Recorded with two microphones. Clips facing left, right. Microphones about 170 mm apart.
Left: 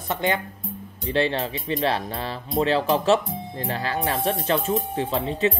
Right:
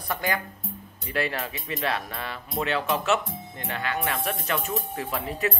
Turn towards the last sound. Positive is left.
turn(degrees=25)  # may be behind; listen again after turning